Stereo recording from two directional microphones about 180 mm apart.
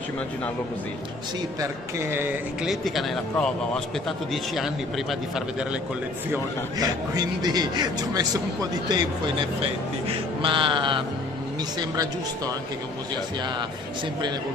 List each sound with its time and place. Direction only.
1.6 s speech: 15° right (ahead or behind)
2.7 s a man's voice: centre (ahead or behind)
6.3 s speech: 20° right (ahead or behind)